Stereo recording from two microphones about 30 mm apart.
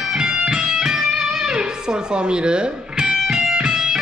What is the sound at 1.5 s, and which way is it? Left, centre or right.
Music, right.